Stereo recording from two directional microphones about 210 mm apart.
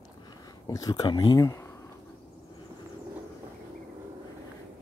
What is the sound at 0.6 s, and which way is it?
Speech, 15° left (ahead or behind).